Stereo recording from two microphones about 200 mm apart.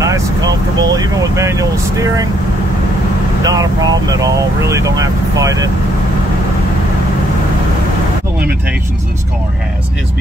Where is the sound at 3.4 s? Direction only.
20° right (ahead or behind).